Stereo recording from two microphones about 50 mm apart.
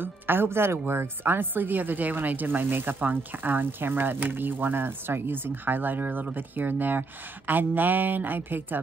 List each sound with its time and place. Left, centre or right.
0.0 s a woman's voice: right